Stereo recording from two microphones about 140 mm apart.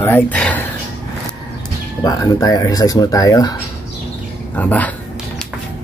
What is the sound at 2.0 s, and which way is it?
Speech, 25° left (ahead or behind).